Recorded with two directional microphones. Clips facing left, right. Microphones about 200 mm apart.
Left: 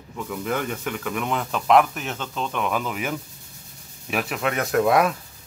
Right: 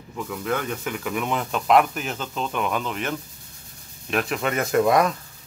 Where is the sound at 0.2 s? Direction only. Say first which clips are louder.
Even; centre (ahead or behind).